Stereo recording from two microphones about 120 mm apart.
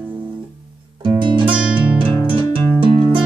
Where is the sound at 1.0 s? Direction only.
45° right (ahead or behind).